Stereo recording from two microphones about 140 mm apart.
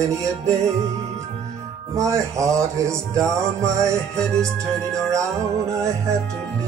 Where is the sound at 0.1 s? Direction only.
20° right (ahead or behind).